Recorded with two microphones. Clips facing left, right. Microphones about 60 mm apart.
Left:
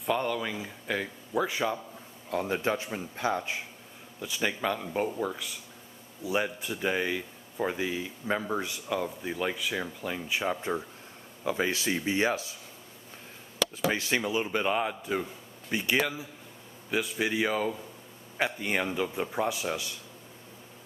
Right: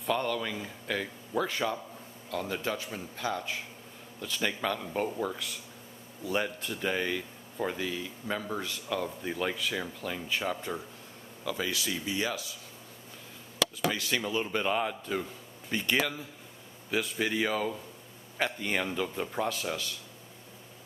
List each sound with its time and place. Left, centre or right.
0.0 s speech: centre
2.3 s a man's voice: left
4.2 s speech: centre
11.4 s speech: left
13.8 s a man's voice: left
14.2 s speech: centre